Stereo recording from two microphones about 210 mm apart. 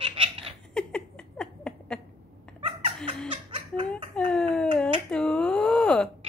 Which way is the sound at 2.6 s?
30° right (ahead or behind).